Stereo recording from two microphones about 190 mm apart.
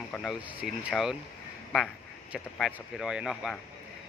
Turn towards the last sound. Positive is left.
turn(degrees=0)  # may be behind; listen again after turning